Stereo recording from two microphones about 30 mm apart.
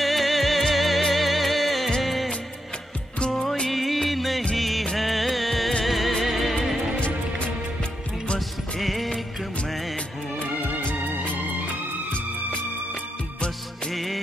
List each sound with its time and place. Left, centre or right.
0.0 s music: centre
2.0 s music of bollywood: centre
3.2 s music: left
3.7 s music of bollywood: centre
4.9 s music: centre
7.0 s music: left
8.4 s music: centre
13.9 s music: centre